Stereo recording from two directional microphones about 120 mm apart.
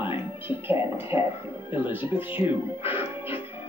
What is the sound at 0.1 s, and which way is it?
Speech, 15° right (ahead or behind).